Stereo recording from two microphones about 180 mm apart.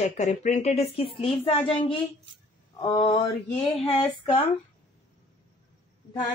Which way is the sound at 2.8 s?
25° left (ahead or behind).